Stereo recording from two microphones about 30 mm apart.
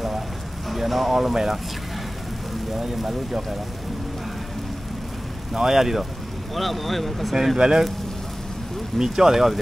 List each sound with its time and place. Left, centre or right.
0.7 s a sound: centre
1.3 s speech: centre
2.8 s speech: centre
5.5 s speech: centre
6.5 s speech: centre
7.5 s speech: right
8.9 s speech: centre